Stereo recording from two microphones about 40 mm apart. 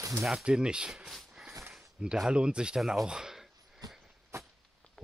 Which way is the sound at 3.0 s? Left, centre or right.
Centre.